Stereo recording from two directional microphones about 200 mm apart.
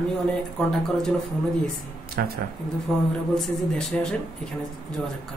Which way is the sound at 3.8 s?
5° left (ahead or behind).